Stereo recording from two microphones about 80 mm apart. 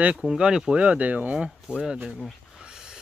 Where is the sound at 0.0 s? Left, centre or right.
Centre.